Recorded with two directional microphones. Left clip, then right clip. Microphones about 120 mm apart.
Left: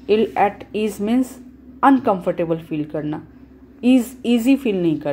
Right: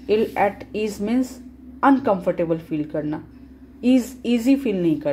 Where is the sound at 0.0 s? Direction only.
25° left (ahead or behind).